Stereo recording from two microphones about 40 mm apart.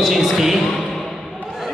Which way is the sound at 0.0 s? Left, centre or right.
Centre.